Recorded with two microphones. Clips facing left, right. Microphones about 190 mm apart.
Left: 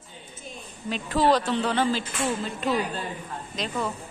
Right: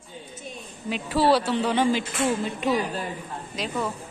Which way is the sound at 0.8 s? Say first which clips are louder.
Right 1 dB; 10° right (ahead or behind).